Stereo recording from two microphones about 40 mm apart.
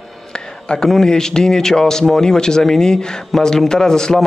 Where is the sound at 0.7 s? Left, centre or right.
Left.